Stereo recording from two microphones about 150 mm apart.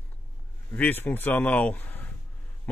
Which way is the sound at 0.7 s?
10° left (ahead or behind).